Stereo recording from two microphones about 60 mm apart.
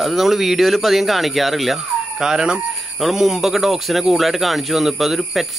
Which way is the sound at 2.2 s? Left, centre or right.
Centre.